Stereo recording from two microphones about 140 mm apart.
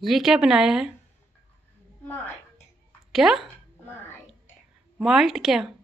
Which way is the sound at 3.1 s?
5° right (ahead or behind).